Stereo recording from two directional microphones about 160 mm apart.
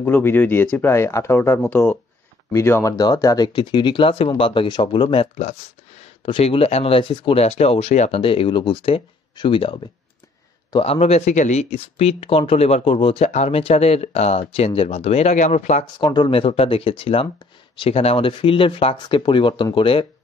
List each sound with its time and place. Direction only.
0.0 s speech: 10° left (ahead or behind); by 15.8 s 50° left (ahead or behind)
16.0 s speech: 30° left (ahead or behind)